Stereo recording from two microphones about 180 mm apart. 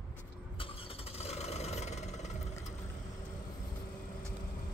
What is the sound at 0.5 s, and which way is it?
Vehicle, 30° left (ahead or behind).